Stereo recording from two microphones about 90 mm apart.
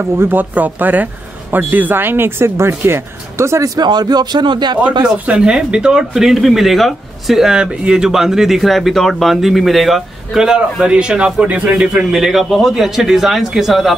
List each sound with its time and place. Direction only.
0.0 s speech: 25° right (ahead or behind); by 4.7 s 55° right (ahead or behind)
5.0 s speech: 10° right (ahead or behind)